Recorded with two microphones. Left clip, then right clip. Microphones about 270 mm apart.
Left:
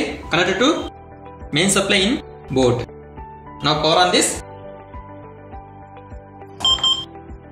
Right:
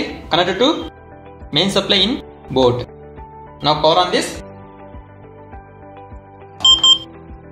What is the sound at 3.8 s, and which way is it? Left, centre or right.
Speech, right.